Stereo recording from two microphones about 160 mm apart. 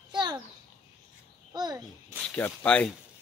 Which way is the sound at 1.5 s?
25° right (ahead or behind).